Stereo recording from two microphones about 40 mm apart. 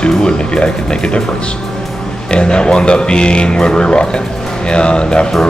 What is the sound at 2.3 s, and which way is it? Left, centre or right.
Speech, left.